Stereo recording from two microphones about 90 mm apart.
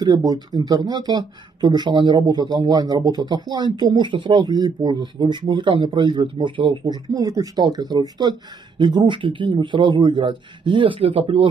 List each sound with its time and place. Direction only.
0.0 s speech: 45° right (ahead or behind); by 6.8 s 65° right (ahead or behind)
6.8 s speech: 45° right (ahead or behind); by 11.4 s 85° right